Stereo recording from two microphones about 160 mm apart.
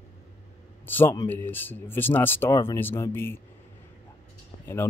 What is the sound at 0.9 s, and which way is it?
Speech, 15° left (ahead or behind).